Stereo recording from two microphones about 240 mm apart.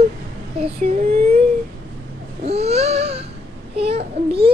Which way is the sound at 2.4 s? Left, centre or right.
Right.